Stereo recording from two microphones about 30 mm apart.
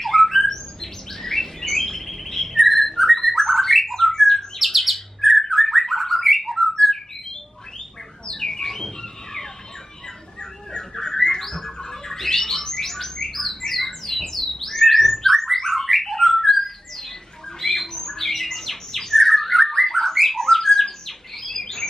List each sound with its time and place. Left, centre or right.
0.0 s squawk: centre
0.5 s bird: centre
4.6 s bird: centre
8.3 s bird: centre
8.6 s a sound: centre
11.0 s rodents: left
11.8 s bird: centre
13.6 s theremin: centre
16.3 s bird: centre
17.6 s squawk: centre
20.4 s bird: centre